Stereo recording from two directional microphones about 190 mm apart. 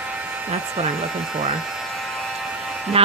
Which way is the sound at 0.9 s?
5° right (ahead or behind).